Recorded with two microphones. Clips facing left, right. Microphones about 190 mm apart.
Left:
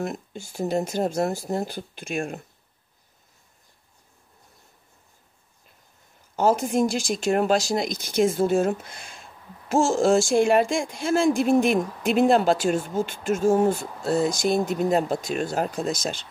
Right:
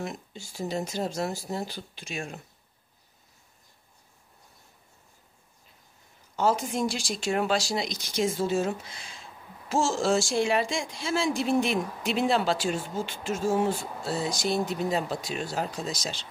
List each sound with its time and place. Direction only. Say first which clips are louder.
0.0 s speech: left 6 dB; 50° left (ahead or behind)
6.3 s speech: left 5 dB; 45° left (ahead or behind)